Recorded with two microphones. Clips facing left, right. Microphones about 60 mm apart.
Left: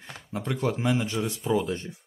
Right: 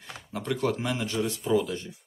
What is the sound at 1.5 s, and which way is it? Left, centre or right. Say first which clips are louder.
Speech: right 1 dB; left.